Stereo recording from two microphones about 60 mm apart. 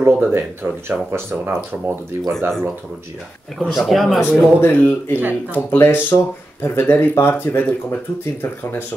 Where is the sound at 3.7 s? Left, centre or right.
Centre.